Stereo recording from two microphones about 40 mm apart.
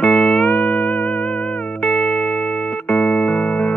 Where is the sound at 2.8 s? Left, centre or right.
Left.